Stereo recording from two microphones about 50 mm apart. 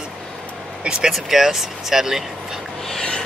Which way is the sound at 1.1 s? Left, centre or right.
Centre.